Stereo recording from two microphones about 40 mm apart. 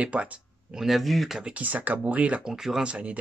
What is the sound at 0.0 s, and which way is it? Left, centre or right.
Speech, right.